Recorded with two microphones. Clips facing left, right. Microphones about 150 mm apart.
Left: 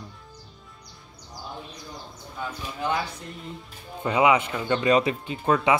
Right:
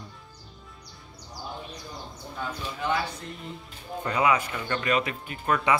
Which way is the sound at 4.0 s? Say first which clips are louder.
Left 4 dB; 20° left (ahead or behind).